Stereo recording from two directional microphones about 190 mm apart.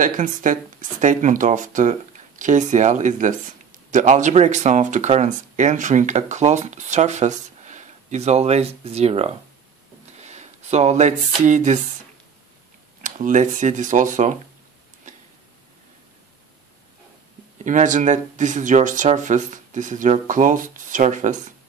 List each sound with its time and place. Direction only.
0.0 s speech: 45° right (ahead or behind)
10.1 s a sound: 35° right (ahead or behind)
13.0 s speech: 45° right (ahead or behind)
17.6 s speech: 40° right (ahead or behind)